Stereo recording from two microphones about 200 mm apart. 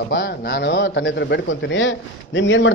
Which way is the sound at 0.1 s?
55° left (ahead or behind).